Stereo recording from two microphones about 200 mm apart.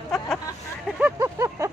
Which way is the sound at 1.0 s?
10° right (ahead or behind).